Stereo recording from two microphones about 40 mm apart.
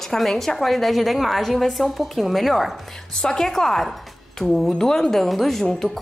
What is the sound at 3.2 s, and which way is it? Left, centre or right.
A woman's voice, centre.